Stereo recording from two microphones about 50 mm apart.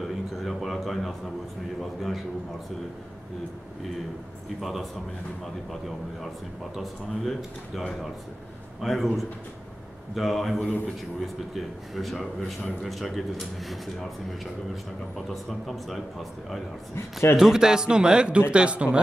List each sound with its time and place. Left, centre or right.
0.0 s a sound: centre
1.8 s speech: centre
4.6 s speech: centre
8.8 s speech: centre
15.1 s speech: centre
16.9 s a man's voice: left
17.4 s a man's voice: centre